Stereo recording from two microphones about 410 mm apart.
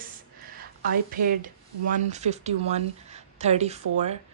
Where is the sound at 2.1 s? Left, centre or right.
Centre.